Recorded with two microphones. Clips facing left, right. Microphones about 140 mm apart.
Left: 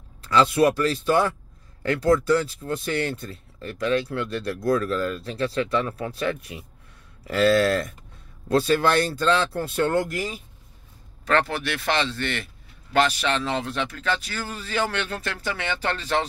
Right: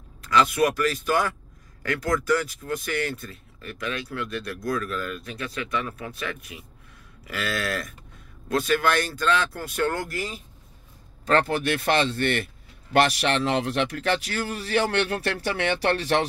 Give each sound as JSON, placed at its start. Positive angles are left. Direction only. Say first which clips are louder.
{"t": 0.2, "sound": "speech", "louder": "left 2 dB", "side_deg": 30}
{"t": 11.2, "sound": "a man's voice", "louder": "right 1 dB", "side_deg": -40}
{"t": 12.9, "sound": "a man's voice", "louder": "right 1 dB", "side_deg": -65}